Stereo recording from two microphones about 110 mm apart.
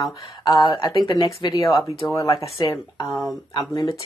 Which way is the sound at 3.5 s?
35° left (ahead or behind).